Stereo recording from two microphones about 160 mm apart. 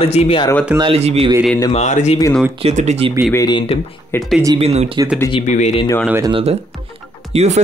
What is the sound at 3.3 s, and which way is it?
Speech, 25° left (ahead or behind).